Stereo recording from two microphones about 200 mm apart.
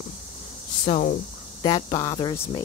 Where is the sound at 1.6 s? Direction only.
20° left (ahead or behind).